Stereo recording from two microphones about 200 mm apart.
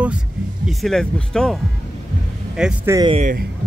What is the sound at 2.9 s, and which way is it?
Speech, 25° right (ahead or behind).